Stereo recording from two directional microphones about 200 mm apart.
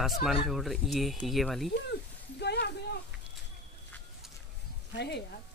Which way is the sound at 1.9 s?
55° left (ahead or behind).